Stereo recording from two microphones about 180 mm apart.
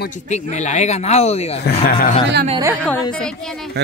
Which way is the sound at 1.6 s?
55° left (ahead or behind).